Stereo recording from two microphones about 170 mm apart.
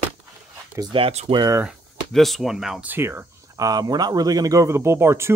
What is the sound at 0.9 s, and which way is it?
Speech, 35° right (ahead or behind).